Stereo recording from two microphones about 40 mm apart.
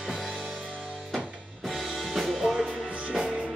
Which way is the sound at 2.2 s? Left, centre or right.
Centre.